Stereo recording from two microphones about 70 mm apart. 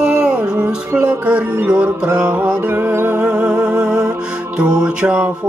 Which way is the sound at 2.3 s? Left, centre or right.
Right.